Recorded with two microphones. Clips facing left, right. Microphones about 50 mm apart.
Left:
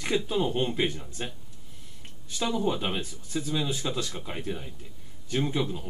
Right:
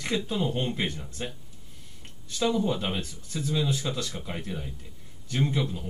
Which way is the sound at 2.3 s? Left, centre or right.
Centre.